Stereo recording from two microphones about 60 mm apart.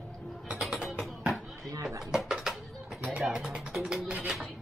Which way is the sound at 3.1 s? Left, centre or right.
Centre.